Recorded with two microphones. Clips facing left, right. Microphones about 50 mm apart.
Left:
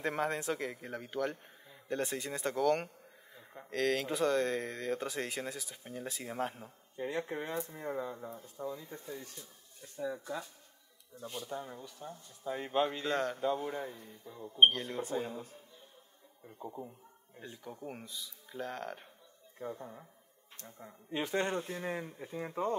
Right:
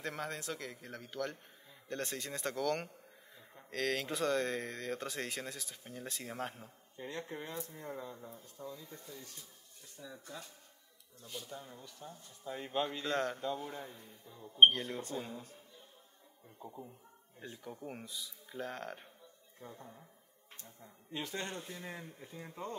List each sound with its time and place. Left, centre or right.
0.0 s a man's voice: left
12.0 s a man's voice: centre
13.4 s speech: centre
14.7 s speech: centre
15.0 s a man's voice: centre
17.4 s speech: centre
19.6 s speech: left
20.6 s speech: left
21.2 s speech: left